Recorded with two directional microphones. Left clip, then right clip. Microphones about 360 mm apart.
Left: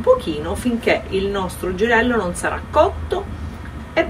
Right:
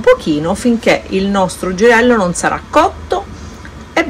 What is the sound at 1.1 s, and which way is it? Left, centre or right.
A woman's voice, centre.